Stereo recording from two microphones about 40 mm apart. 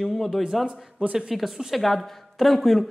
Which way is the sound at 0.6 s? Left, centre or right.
Right.